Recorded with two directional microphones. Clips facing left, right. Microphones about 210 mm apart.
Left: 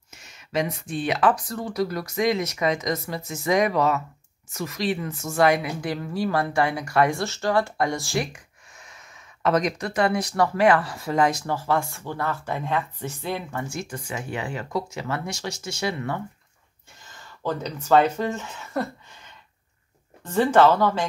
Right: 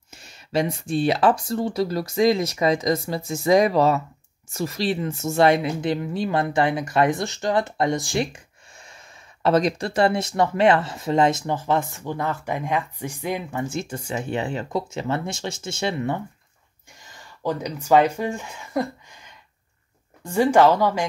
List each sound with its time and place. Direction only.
0.1 s a woman's voice: 30° right (ahead or behind); by 21.1 s 10° right (ahead or behind)